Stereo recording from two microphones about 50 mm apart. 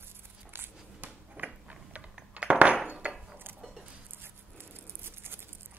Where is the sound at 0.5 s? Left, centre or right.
Right.